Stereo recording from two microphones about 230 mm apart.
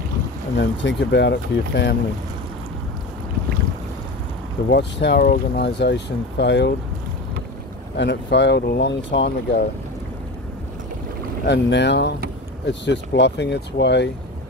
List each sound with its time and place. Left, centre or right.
0.6 s speech: left
4.6 s speech: left
8.0 s speech: left
11.4 s speech: left